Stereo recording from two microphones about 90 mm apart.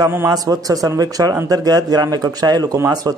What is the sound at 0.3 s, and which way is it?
Speech, 45° right (ahead or behind).